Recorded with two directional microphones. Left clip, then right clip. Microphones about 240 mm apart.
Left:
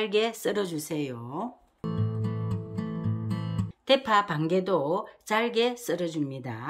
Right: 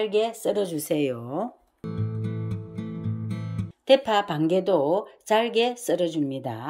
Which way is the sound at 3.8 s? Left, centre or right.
Centre.